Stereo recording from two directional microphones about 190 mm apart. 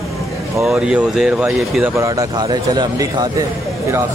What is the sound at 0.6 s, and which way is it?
Speech, 5° right (ahead or behind).